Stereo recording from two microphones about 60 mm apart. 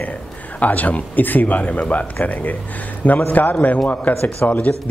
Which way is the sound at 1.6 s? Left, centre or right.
Centre.